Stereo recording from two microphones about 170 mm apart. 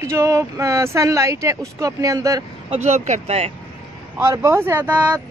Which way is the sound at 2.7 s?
40° right (ahead or behind).